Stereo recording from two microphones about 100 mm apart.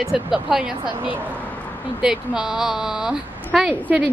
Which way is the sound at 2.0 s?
10° right (ahead or behind).